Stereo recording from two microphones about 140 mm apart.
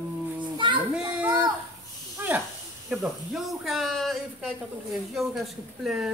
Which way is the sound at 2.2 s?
15° right (ahead or behind).